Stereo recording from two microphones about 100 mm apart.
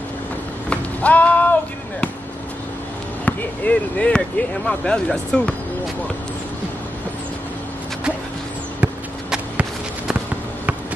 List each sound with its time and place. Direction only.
0.7 s chop: 15° left (ahead or behind)
3.3 s speech: 15° left (ahead or behind)
8.8 s a sound: 10° right (ahead or behind)